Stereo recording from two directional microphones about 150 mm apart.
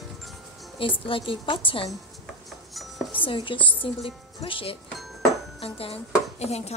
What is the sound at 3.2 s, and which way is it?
Speech, 35° left (ahead or behind).